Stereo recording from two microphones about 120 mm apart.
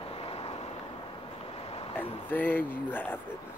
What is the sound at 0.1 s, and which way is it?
Vehicle, 55° left (ahead or behind).